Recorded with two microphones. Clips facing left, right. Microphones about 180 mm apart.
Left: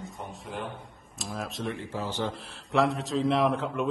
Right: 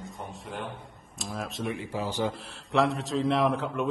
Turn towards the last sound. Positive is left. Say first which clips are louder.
# even
turn(degrees=0)  # may be behind; listen again after turning